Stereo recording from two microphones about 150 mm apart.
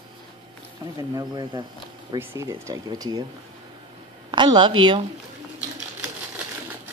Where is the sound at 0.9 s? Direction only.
25° right (ahead or behind).